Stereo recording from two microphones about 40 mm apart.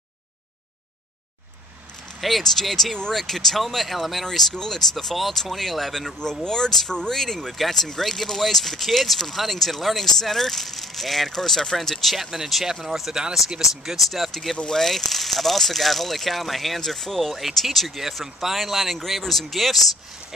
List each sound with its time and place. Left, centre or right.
2.1 s speech: centre
6.4 s speech: centre
17.4 s speech: centre